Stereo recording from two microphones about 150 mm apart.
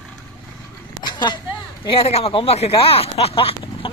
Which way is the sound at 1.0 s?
30° left (ahead or behind).